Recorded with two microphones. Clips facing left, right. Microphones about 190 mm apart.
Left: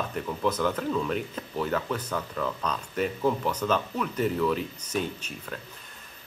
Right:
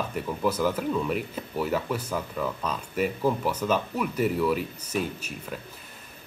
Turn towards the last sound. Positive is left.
turn(degrees=-5)  # may be behind; listen again after turning